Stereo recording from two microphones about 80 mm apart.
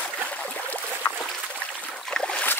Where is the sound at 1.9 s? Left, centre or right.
Centre.